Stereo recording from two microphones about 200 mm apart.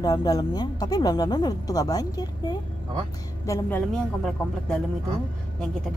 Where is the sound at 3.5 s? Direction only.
5° left (ahead or behind).